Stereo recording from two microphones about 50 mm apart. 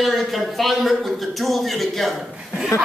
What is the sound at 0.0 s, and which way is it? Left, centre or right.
A man's voice, centre.